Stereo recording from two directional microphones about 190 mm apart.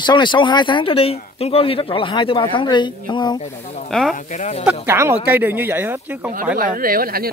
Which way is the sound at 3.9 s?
Centre (ahead or behind).